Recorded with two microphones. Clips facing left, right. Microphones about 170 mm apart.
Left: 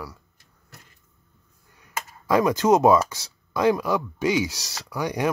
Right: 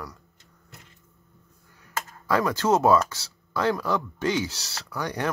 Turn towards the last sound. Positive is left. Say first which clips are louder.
# left 4 dB
turn(degrees=10)  # may be behind; listen again after turning